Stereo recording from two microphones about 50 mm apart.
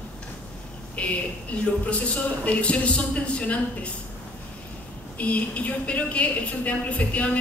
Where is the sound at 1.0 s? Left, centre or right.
Left.